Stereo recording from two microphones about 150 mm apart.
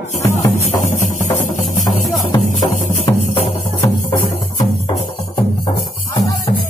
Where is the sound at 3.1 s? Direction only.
30° left (ahead or behind).